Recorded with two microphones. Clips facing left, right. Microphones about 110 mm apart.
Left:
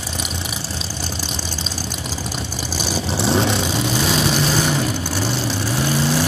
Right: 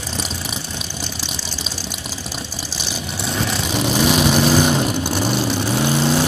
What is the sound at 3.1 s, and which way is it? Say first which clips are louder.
Vehicle: left 6 dB; 30° left (ahead or behind).